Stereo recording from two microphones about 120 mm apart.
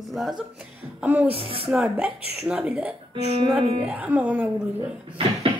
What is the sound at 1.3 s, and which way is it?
Speech, 50° right (ahead or behind).